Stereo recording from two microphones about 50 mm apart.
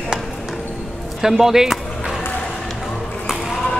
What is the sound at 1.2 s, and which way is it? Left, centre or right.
Speech, centre.